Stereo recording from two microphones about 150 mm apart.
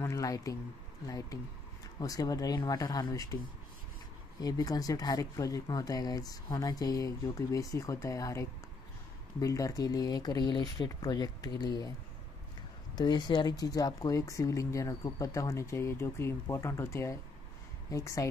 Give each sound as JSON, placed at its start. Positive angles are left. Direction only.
{"t": 0.0, "sound": "speech", "side_deg": 20}
{"t": 4.4, "sound": "speech", "side_deg": 25}
{"t": 12.9, "sound": "speech", "side_deg": 30}